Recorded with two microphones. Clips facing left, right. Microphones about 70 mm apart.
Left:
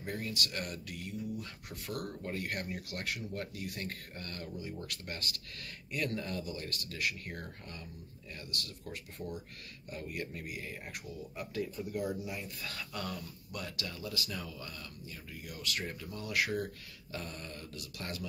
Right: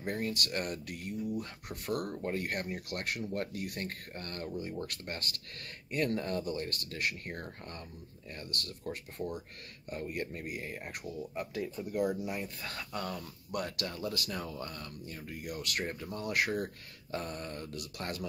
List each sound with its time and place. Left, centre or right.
0.0 s speech: right
1.9 s speech: right
2.9 s speech: right
9.8 s speech: right
10.4 s speech: right
11.8 s speech: right
13.5 s speech: right